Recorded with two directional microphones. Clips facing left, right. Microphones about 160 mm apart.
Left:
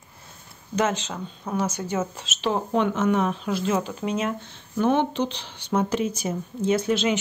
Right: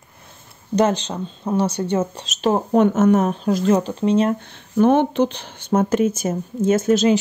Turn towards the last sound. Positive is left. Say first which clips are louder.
# right 6 dB
turn(degrees=-40)  # may be behind; listen again after turning